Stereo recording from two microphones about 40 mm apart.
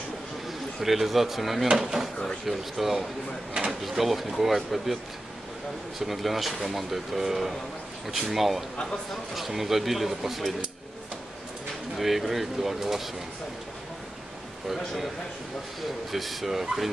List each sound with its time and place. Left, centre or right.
0.5 s speech: centre
5.9 s speech: centre
12.0 s speech: centre
16.1 s speech: centre